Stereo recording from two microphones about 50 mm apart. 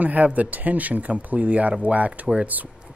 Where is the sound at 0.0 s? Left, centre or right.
Right.